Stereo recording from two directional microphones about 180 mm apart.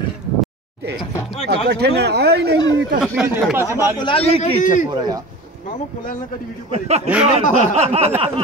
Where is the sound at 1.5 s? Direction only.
70° right (ahead or behind).